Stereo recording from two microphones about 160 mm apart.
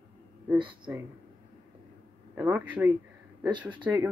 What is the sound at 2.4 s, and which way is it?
Speech, 10° right (ahead or behind).